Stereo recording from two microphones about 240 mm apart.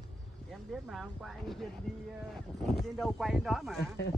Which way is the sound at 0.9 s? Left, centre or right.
Centre.